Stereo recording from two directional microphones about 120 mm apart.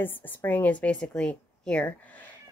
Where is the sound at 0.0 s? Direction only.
15° left (ahead or behind).